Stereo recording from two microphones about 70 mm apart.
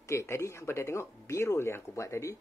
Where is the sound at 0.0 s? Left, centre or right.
Left.